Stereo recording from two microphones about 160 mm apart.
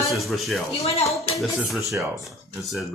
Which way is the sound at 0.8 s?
40° left (ahead or behind).